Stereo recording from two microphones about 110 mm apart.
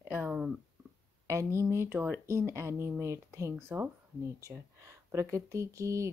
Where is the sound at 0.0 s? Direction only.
15° right (ahead or behind).